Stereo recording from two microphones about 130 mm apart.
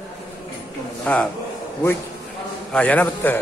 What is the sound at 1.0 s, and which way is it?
Speech, 10° left (ahead or behind).